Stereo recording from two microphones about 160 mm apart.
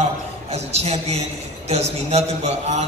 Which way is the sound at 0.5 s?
40° right (ahead or behind).